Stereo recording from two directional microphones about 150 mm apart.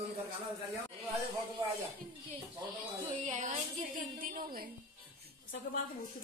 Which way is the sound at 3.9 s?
65° right (ahead or behind).